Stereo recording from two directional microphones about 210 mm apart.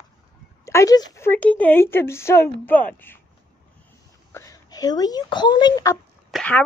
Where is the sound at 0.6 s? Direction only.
15° left (ahead or behind).